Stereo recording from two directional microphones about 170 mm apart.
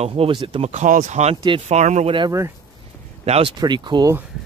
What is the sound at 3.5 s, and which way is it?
Speech, 25° right (ahead or behind).